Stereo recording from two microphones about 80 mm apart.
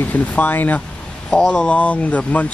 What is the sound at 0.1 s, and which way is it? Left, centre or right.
Speech, left.